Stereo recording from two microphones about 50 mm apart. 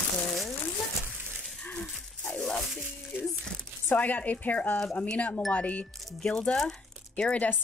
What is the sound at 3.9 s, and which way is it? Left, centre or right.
Speech, left.